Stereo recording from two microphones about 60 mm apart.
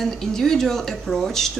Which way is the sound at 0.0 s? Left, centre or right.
Centre.